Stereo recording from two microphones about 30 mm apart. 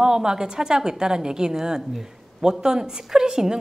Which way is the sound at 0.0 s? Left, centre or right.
Right.